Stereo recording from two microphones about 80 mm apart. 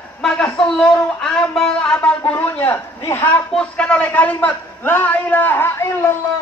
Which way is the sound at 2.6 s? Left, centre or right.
Left.